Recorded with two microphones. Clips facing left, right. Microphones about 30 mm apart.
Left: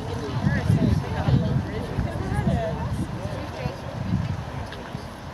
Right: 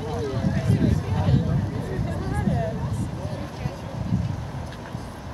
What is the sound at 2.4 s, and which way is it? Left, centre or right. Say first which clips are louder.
Speech: even; centre.